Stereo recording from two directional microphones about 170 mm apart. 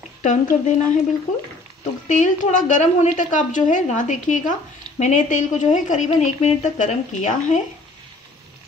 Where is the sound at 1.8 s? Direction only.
50° left (ahead or behind).